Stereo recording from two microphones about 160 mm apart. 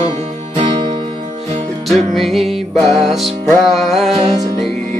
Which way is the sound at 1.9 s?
Centre (ahead or behind).